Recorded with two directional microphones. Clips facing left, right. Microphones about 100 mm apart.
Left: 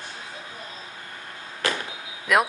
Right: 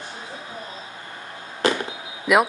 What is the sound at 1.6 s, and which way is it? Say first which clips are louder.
Chop: right 6 dB; 25° right (ahead or behind).